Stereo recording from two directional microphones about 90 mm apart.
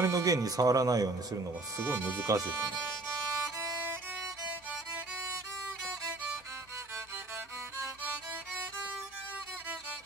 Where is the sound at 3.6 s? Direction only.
35° right (ahead or behind).